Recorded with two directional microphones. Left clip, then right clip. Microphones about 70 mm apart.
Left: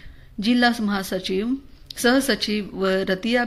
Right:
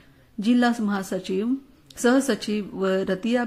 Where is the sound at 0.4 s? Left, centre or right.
Right.